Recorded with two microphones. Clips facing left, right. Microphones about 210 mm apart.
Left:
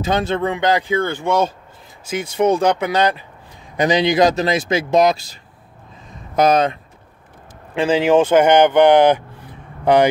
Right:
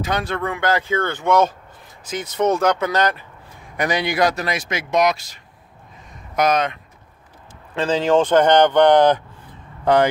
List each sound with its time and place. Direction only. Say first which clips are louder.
0.0 s speech: left 4 dB; 25° left (ahead or behind)
2.3 s speech: left 2 dB; 15° left (ahead or behind); by 5.1 s 30° left (ahead or behind)
6.3 s speech: left 4 dB; 30° left (ahead or behind)
7.7 s speech: left 3 dB; 10° left (ahead or behind)